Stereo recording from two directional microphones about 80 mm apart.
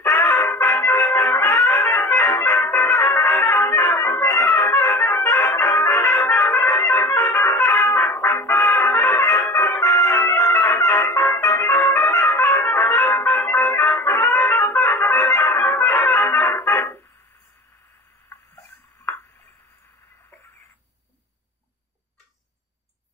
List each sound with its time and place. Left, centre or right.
0.0 s music: left
0.9 s music: left
5.9 s trumpet: left
7.0 s music: left
11.6 s trumpet: left
13.6 s music: left